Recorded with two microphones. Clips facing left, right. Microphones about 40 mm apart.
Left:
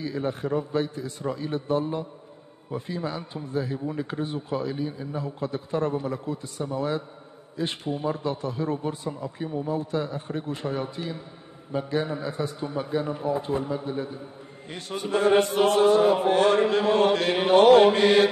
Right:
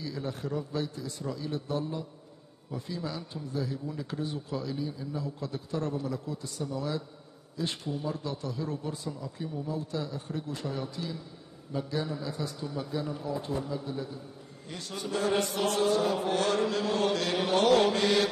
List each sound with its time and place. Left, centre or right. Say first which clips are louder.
0.0 s a man's voice: left 7 dB; left